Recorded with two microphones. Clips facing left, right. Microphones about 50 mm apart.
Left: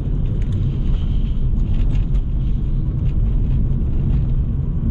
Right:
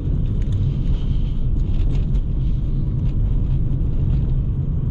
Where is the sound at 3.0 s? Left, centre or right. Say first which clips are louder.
Left 1 dB; left.